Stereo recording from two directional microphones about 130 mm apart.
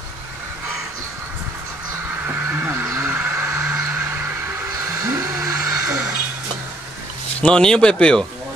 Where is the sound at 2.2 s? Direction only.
15° right (ahead or behind).